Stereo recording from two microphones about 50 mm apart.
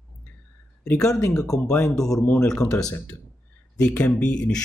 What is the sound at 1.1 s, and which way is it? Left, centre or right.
Speech, left.